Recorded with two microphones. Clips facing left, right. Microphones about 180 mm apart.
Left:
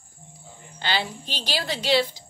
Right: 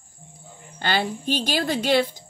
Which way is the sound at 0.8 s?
50° right (ahead or behind).